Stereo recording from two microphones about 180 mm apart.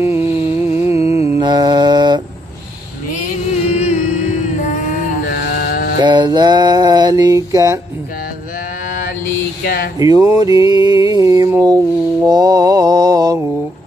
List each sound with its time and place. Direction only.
0.0 s a sound: 15° right (ahead or behind)
1.4 s mantra: 25° right (ahead or behind)
3.7 s music: 40° left (ahead or behind)
5.3 s a sound: 60° left (ahead or behind)
5.9 s mantra: 25° right (ahead or behind)
9.9 s mantra: 20° right (ahead or behind)